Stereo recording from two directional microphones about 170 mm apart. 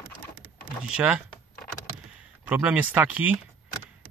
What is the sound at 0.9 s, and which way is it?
Speech, 5° right (ahead or behind).